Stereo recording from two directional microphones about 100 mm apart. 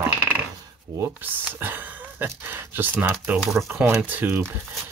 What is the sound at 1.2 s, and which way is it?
Speech, 20° right (ahead or behind).